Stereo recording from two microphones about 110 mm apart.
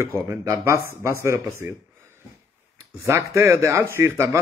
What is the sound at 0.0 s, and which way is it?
Speech, 25° right (ahead or behind).